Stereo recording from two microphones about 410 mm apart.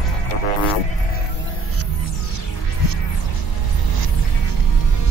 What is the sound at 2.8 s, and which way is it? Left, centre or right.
Music, left.